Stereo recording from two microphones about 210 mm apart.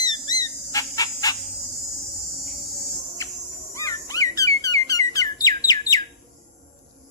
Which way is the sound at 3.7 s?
15° left (ahead or behind).